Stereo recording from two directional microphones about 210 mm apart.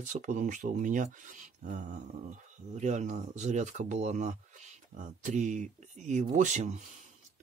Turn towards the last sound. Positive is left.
turn(degrees=-35)  # may be behind; listen again after turning